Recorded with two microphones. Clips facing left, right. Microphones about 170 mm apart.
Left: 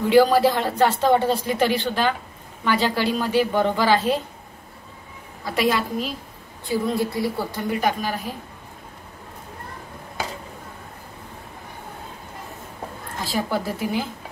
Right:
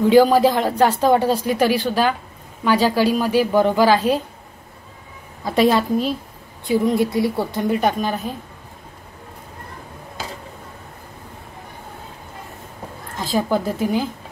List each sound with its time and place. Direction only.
0.1 s a woman's voice: 15° right (ahead or behind)
5.4 s a woman's voice: 25° right (ahead or behind)
13.2 s a woman's voice: 15° right (ahead or behind)